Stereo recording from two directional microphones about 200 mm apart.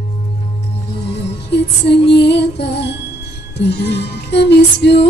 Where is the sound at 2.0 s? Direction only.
55° left (ahead or behind).